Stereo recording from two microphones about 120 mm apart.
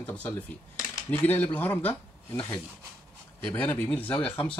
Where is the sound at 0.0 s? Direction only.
15° left (ahead or behind).